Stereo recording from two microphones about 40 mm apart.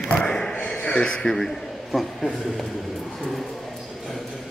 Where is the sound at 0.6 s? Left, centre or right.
Left.